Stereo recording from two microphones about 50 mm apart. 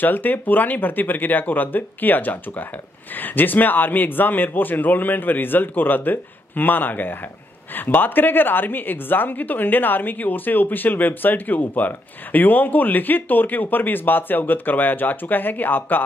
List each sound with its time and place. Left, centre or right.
0.0 s a woman's voice: left